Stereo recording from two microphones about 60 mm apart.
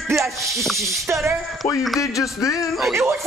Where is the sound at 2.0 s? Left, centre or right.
Left.